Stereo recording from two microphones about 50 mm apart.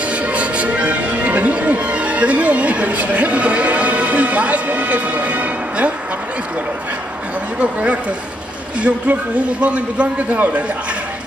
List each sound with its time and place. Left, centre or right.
0.0 s music: right
7.5 s a man's voice: right